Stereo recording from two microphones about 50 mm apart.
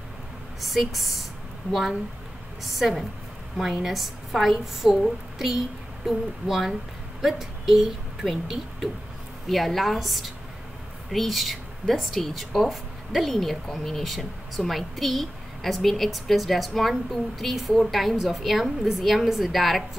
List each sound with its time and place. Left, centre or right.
0.6 s speech: centre
6.0 s a woman's voice: centre